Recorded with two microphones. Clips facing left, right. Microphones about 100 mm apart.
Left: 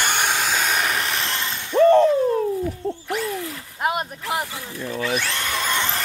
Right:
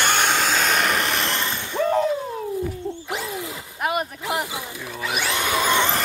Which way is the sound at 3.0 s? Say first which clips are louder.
Left 3 dB; 20° right (ahead or behind).